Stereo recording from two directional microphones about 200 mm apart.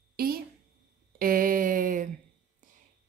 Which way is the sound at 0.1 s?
50° right (ahead or behind).